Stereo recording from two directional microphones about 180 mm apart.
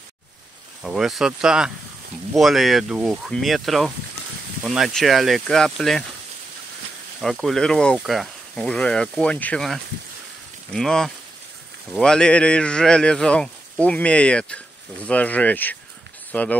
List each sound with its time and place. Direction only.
0.8 s speech: centre (ahead or behind)
7.2 s speech: centre (ahead or behind)
16.3 s a sound: 10° left (ahead or behind)